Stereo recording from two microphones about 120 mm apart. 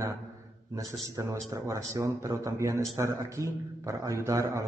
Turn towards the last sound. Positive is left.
turn(degrees=-25)  # may be behind; listen again after turning